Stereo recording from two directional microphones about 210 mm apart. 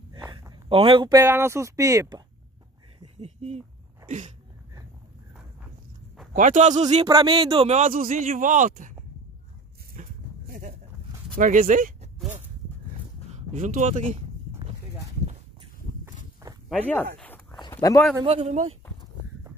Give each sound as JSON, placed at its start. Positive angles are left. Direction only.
{"t": 0.1, "sound": "speech", "side_deg": -15}
{"t": 3.2, "sound": "speech", "side_deg": -30}
{"t": 6.3, "sound": "speech", "side_deg": -35}
{"t": 7.1, "sound": "speech", "side_deg": -20}
{"t": 9.9, "sound": "dog", "side_deg": -40}
{"t": 11.3, "sound": "speech", "side_deg": -40}
{"t": 13.5, "sound": "speech", "side_deg": -35}
{"t": 16.6, "sound": "speech", "side_deg": 5}
{"t": 17.2, "sound": "a sound", "side_deg": 5}
{"t": 17.6, "sound": "a sound", "side_deg": 20}
{"t": 18.2, "sound": "speech", "side_deg": -30}